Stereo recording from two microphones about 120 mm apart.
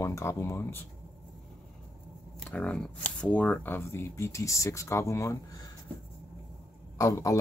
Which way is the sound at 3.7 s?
20° left (ahead or behind).